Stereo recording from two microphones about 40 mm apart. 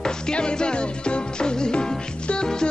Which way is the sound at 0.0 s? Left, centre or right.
Left.